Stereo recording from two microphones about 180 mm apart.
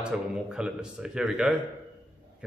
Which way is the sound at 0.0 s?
5° right (ahead or behind).